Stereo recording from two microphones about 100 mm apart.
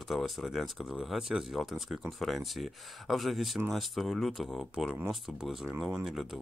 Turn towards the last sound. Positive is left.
turn(degrees=-5)  # may be behind; listen again after turning